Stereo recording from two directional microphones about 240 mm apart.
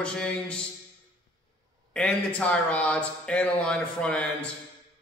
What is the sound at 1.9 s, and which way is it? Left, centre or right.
A man's voice, centre.